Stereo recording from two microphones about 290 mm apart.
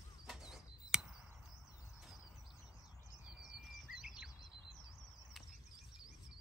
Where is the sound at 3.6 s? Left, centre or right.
Centre.